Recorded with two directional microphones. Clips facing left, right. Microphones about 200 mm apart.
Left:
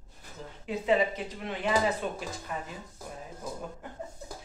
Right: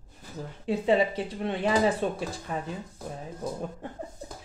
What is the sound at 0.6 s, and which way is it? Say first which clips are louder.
Speech: right 3 dB; 30° right (ahead or behind).